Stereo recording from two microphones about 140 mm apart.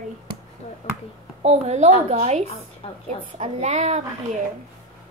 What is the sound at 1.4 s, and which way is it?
A woman's voice, 55° right (ahead or behind).